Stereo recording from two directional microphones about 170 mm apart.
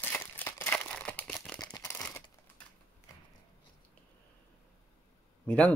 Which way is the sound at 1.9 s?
5° left (ahead or behind).